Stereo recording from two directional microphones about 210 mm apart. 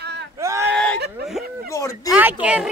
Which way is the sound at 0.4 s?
15° right (ahead or behind).